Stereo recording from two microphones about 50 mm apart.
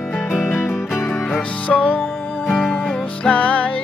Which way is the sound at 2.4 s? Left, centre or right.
Centre.